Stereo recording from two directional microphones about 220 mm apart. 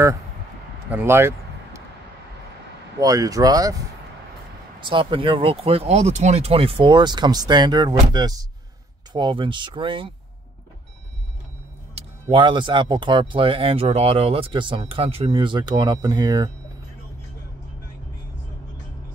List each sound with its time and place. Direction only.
0.8 s a sound: 10° right (ahead or behind)
3.0 s speech: 15° right (ahead or behind)
11.9 s speech: 20° right (ahead or behind)